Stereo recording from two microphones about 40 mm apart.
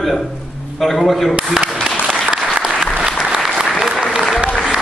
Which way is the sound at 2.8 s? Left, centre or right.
Right.